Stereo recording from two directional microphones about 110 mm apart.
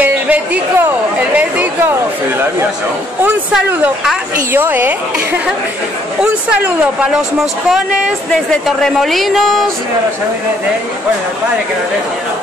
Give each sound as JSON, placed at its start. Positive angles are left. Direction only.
{"t": 0.0, "sound": "chatter", "side_deg": -15}
{"t": 3.5, "sound": "speech", "side_deg": -5}
{"t": 4.5, "sound": "speech", "side_deg": -20}
{"t": 6.5, "sound": "a woman's voice", "side_deg": -15}
{"t": 8.3, "sound": "speech", "side_deg": 5}